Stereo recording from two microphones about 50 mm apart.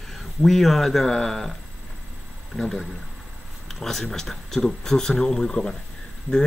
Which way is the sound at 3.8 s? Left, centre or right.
Centre.